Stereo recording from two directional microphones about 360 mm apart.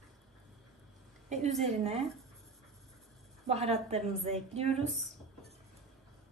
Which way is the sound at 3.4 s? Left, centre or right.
Centre.